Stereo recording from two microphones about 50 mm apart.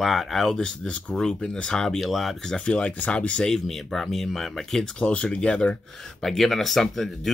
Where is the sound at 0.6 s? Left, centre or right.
Centre.